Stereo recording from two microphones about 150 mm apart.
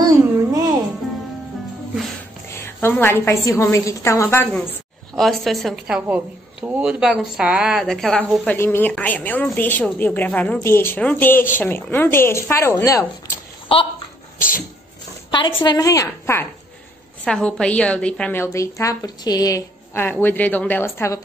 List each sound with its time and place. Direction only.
0.5 s music: 25° right (ahead or behind)
2.5 s a woman's voice: 15° left (ahead or behind)
5.1 s a woman's voice: centre (ahead or behind); by 13.4 s 20° left (ahead or behind)
13.7 s speech: 35° left (ahead or behind)
15.3 s a woman's voice: 30° left (ahead or behind)
17.2 s a woman's voice: 5° left (ahead or behind)